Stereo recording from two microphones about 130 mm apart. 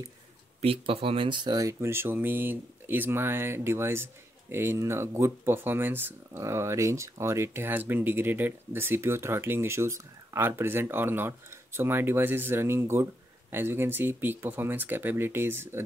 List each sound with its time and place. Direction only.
0.6 s speech: 50° right (ahead or behind); by 15.8 s 15° right (ahead or behind)